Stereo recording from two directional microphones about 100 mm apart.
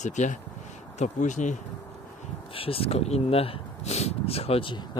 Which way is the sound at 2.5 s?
70° left (ahead or behind).